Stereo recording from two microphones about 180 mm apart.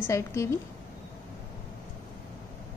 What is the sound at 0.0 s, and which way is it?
Speech, 15° left (ahead or behind).